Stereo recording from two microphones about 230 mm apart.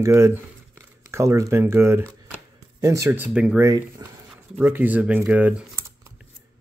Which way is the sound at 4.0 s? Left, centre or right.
Centre.